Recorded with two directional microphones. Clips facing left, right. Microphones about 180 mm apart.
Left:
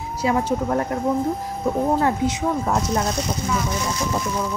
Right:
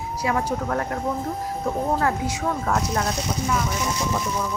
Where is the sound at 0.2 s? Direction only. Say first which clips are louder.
Left 4 dB; 25° left (ahead or behind).